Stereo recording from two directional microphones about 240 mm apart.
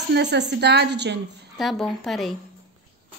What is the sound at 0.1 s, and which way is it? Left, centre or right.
Speech, right.